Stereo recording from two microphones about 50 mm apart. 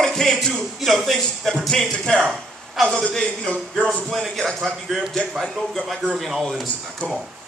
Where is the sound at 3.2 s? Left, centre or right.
Left.